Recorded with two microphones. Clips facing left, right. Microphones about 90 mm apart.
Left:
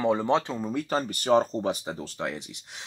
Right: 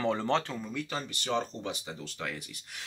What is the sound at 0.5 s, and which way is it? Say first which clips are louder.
Speech: left 8 dB; 40° left (ahead or behind).